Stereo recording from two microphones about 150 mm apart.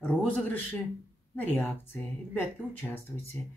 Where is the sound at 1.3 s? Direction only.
15° left (ahead or behind).